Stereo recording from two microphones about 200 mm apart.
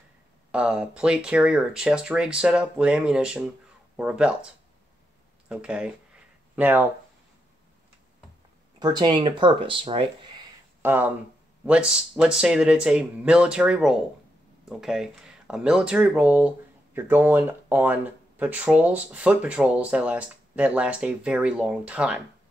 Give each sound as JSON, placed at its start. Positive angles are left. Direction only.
{"t": 0.5, "sound": "speech", "side_deg": -5}
{"t": 5.5, "sound": "speech", "side_deg": -5}
{"t": 8.7, "sound": "speech", "side_deg": -20}
{"t": 10.8, "sound": "speech", "side_deg": -10}